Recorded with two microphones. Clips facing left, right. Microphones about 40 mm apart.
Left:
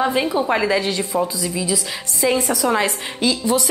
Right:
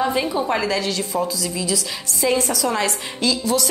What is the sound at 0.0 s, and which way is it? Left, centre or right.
A woman's voice, centre.